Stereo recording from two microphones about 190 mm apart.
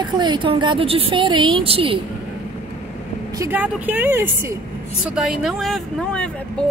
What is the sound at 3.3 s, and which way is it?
A woman's voice, 15° right (ahead or behind).